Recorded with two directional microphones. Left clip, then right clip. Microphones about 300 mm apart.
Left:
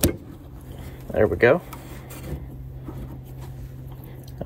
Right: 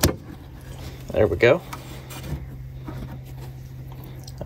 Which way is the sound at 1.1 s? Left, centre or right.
Centre.